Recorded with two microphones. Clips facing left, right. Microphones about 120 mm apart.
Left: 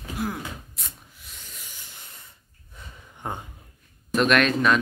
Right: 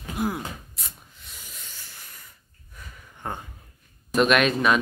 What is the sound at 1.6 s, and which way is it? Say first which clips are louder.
Hiss: even; 15° left (ahead or behind).